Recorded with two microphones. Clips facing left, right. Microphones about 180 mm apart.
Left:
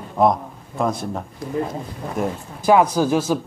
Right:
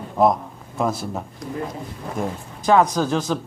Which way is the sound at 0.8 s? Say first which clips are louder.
Left 1 dB; 5° right (ahead or behind).